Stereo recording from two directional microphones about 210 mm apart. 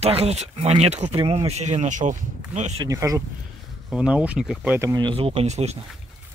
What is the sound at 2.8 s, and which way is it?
Speech, 15° right (ahead or behind).